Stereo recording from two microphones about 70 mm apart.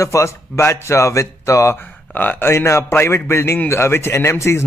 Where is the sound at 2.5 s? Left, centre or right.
Left.